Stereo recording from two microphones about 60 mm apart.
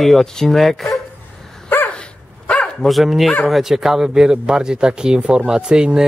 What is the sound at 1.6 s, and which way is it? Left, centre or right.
Dog, left.